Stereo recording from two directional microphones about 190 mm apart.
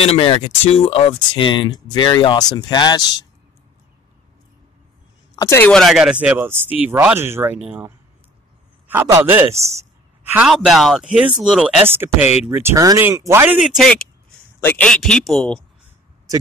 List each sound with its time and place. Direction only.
0.0 s speech: 30° left (ahead or behind)
5.3 s speech: 15° left (ahead or behind)
5.7 s speech: centre (ahead or behind)
9.5 s speech: 35° right (ahead or behind)
10.3 s speech: 5° right (ahead or behind)
13.6 s speech: centre (ahead or behind)